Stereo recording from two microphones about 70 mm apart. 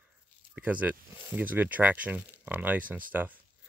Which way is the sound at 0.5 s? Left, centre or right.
Right.